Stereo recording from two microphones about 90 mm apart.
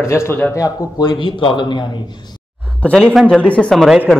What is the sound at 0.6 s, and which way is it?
Speech, 40° left (ahead or behind).